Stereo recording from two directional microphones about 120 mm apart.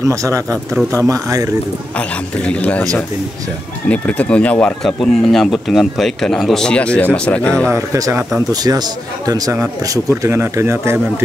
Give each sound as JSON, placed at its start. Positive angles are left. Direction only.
{"t": 0.0, "sound": "speech", "side_deg": -25}
{"t": 2.0, "sound": "speech", "side_deg": 10}
{"t": 3.9, "sound": "speech", "side_deg": 10}
{"t": 7.7, "sound": "speech", "side_deg": -25}